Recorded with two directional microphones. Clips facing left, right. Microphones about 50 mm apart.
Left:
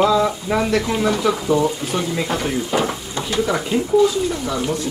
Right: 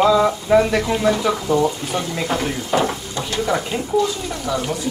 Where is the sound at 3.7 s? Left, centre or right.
Centre.